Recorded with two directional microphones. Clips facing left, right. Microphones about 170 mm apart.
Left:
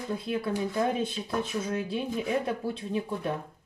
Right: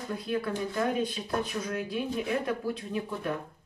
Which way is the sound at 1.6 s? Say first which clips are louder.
Left 1 dB; 25° left (ahead or behind).